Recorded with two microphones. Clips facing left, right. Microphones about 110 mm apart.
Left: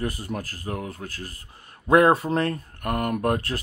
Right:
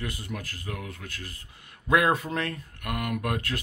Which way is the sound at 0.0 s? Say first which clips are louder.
Left 6 dB; 40° left (ahead or behind).